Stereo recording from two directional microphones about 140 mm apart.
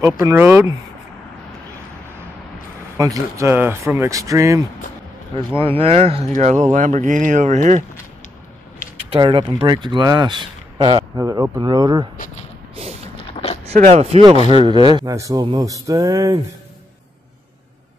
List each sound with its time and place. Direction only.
0.2 s speech: 20° right (ahead or behind)
3.0 s speech: 20° right (ahead or behind)
5.6 s speech: 45° right (ahead or behind)
9.1 s speech: 35° right (ahead or behind)
12.7 s a sound: 45° right (ahead or behind)
13.1 s a sound: 45° left (ahead or behind)
13.7 s speech: 55° right (ahead or behind)
14.5 s speech: 35° right (ahead or behind)